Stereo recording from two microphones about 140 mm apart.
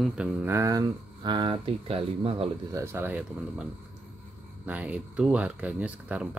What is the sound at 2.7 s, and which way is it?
Speech, 15° right (ahead or behind).